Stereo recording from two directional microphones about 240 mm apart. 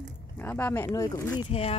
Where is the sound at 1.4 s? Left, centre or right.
Left.